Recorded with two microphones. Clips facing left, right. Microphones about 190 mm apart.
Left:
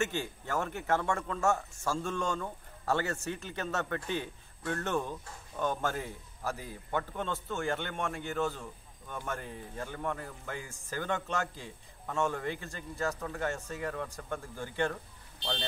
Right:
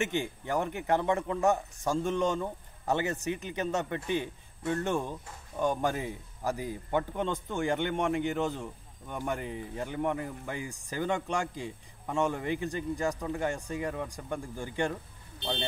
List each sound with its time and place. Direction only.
0.0 s a man's voice: 15° right (ahead or behind)